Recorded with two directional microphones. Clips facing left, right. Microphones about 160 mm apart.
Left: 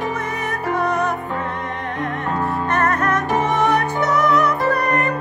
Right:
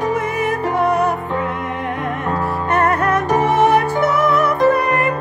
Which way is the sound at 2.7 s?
30° right (ahead or behind).